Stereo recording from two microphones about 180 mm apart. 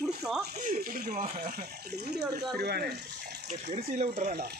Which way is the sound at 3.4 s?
40° right (ahead or behind).